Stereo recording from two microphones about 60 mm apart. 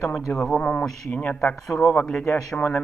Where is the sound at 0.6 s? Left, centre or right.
Centre.